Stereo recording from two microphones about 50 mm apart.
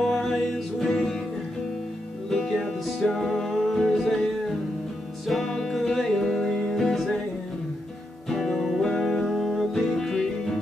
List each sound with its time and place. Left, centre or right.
0.0 s music: centre
2.3 s music: centre
5.2 s music: centre
8.3 s music: centre